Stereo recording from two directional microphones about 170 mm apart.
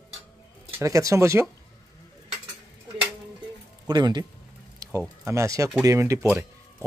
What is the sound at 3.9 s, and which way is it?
Speech, 25° right (ahead or behind).